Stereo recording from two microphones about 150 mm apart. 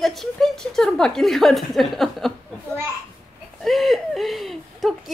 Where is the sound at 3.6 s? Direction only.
Centre (ahead or behind).